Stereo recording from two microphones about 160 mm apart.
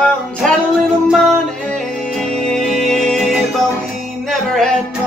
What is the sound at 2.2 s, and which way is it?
Music, 5° left (ahead or behind).